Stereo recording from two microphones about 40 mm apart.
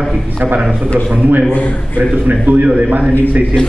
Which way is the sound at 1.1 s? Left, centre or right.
Right.